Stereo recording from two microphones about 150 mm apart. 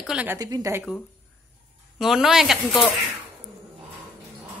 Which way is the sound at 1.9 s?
Centre (ahead or behind).